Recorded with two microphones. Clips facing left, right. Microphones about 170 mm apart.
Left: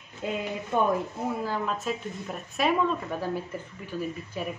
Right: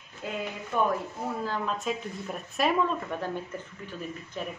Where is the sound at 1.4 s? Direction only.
10° left (ahead or behind).